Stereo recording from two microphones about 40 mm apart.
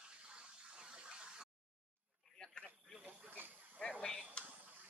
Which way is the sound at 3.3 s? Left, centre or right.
Right.